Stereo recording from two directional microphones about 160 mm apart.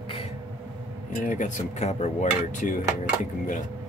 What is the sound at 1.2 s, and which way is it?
Speech, 50° left (ahead or behind).